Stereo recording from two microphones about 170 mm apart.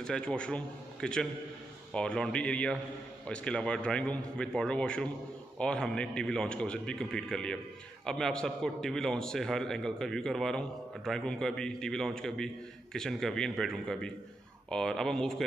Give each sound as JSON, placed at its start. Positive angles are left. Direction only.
{"t": 0.0, "sound": "a man's voice", "side_deg": 5}